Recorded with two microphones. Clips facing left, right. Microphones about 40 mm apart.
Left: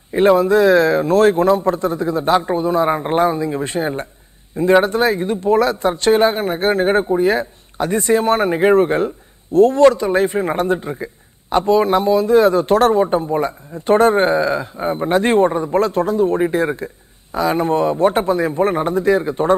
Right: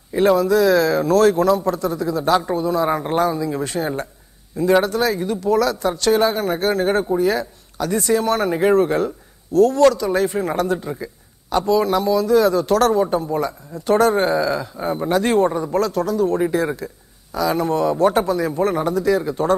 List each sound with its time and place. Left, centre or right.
0.1 s a man's voice: left